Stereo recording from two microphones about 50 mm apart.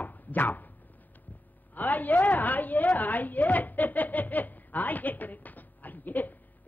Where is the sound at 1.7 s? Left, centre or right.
Left.